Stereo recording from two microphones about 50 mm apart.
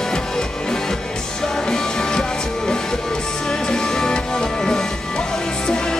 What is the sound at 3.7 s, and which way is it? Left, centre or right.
Music, centre.